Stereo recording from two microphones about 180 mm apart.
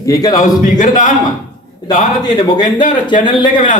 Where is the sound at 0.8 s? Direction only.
45° left (ahead or behind).